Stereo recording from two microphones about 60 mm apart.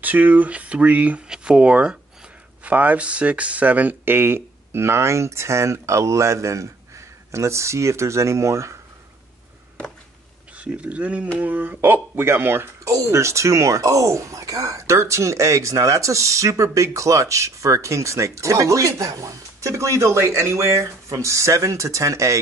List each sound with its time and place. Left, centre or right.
0.0 s speech: right
1.3 s speech: centre; by 8.7 s right
10.6 s speech: right
12.8 s speech: right